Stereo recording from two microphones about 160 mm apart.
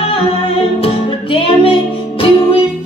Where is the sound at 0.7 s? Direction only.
35° left (ahead or behind).